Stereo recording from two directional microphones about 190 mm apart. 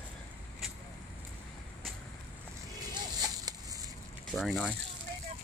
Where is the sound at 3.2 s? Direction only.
20° right (ahead or behind).